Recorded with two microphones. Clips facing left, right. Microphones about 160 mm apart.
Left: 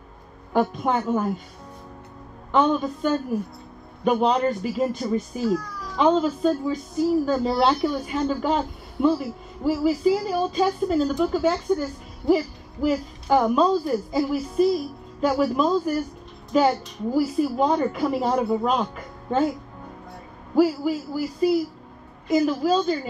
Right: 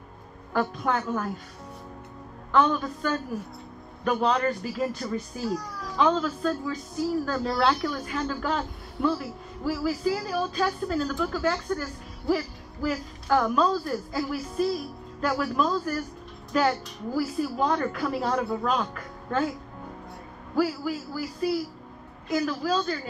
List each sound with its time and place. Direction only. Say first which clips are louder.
0.5 s a man's voice: left 4 dB; 20° left (ahead or behind)
2.5 s a man's voice: left 3 dB; 20° left (ahead or behind)
20.5 s a man's voice: left 6 dB; 20° left (ahead or behind)